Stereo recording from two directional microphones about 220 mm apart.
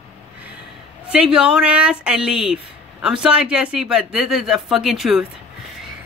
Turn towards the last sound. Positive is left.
turn(degrees=0)  # may be behind; listen again after turning